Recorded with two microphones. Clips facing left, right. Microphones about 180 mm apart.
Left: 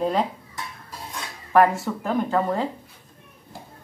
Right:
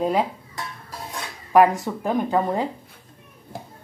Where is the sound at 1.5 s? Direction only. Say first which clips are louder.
Right 2 dB; 15° right (ahead or behind).